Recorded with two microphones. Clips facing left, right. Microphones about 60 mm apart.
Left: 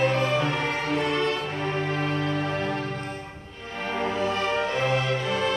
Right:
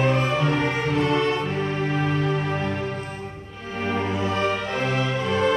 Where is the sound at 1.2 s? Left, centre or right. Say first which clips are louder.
Right 3 dB; centre.